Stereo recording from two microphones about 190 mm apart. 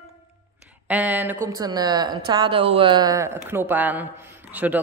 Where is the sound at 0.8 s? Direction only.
10° right (ahead or behind).